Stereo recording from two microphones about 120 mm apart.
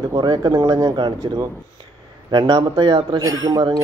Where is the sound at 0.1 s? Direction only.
35° right (ahead or behind).